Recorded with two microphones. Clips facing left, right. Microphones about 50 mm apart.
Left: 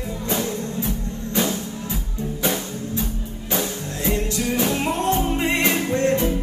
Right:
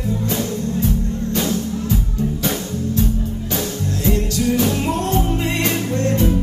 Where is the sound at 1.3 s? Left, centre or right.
Centre.